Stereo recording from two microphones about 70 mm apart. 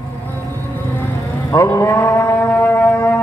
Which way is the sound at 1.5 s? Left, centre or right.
Left.